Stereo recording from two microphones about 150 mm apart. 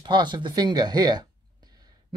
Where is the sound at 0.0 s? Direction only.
30° right (ahead or behind).